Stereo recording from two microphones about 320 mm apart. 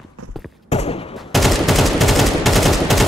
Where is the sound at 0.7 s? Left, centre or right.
Centre.